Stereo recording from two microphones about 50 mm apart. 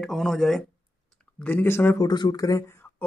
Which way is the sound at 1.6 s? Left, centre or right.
Left.